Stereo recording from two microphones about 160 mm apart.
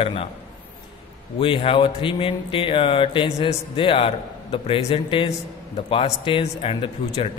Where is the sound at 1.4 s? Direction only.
35° left (ahead or behind).